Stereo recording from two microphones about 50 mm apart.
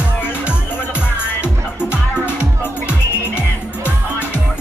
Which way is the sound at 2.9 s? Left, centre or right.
Right.